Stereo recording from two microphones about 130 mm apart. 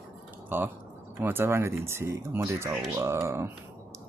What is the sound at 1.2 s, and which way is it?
Speech, 15° right (ahead or behind).